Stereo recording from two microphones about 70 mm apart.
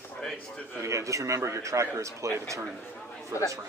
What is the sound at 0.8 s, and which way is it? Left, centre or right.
A man's voice, right.